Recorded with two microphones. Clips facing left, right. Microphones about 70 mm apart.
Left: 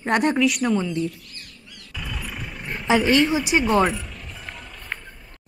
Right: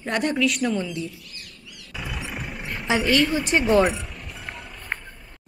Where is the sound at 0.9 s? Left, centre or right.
Left.